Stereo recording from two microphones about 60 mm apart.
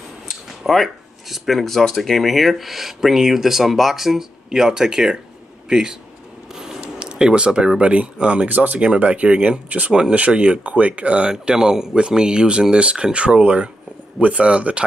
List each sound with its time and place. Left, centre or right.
0.5 s speech: centre
6.5 s mechanisms: centre
7.0 s speech: centre